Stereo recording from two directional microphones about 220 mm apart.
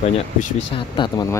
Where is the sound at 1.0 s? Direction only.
20° left (ahead or behind).